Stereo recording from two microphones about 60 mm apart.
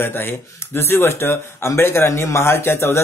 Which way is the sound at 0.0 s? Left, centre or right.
Left.